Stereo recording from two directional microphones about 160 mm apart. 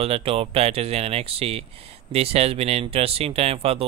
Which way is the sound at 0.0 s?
35° right (ahead or behind).